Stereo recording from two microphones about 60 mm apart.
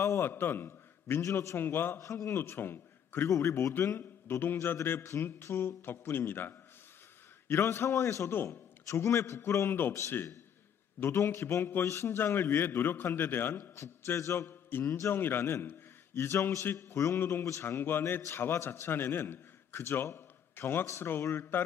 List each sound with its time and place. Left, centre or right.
0.0 s a man's voice: left
0.3 s a man's voice: left
1.2 s mantra: left
1.6 s a man's voice: left
2.0 s mantra: left
2.3 s a man's voice: left
3.3 s a man's voice: left
11.0 s a man's voice: left
13.7 s a man's voice: left
14.9 s mantra: left
15.1 s a man's voice: left
16.7 s mantra: left
17.2 s a man's voice: left